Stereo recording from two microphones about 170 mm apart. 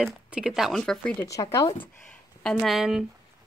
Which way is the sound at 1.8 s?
5° left (ahead or behind).